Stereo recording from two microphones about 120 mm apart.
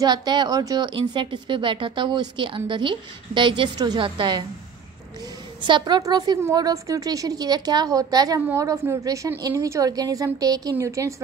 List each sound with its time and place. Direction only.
0.0 s a woman's voice: 35° right (ahead or behind)
5.6 s a woman's voice: 40° right (ahead or behind); by 11.2 s 25° right (ahead or behind)